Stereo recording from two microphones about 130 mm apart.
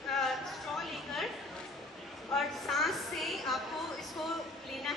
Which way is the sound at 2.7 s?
Centre (ahead or behind).